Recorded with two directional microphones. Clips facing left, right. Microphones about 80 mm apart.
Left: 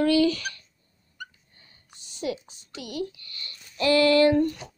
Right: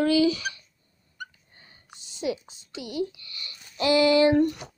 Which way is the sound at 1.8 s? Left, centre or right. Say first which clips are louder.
Right 3 dB; right.